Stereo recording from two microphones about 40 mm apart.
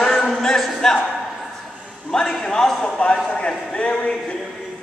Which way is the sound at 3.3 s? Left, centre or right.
Left.